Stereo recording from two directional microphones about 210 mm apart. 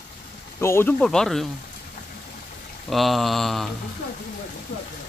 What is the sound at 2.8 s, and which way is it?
Speech, centre (ahead or behind).